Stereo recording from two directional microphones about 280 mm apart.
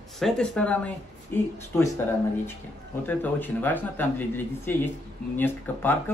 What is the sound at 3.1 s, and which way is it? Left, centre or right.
Speech, centre.